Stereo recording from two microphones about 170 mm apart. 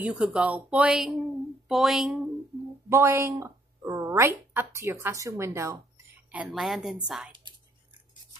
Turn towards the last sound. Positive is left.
turn(degrees=-5)  # may be behind; listen again after turning